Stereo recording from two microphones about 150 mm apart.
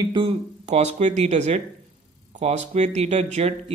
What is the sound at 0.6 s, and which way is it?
Speech, 50° right (ahead or behind).